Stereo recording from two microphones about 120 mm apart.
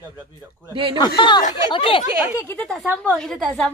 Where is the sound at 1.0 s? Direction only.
40° left (ahead or behind).